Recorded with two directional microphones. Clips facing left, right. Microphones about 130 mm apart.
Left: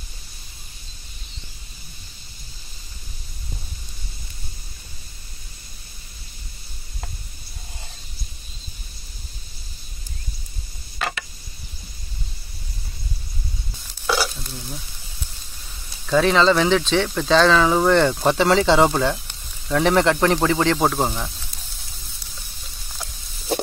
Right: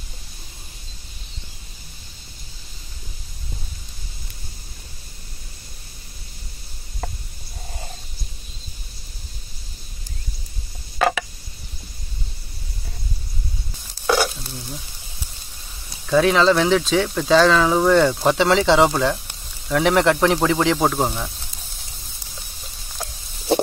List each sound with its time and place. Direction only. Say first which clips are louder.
14.0 s stir: right 3 dB; 25° right (ahead or behind)
16.1 s speech: right 1 dB; 5° right (ahead or behind)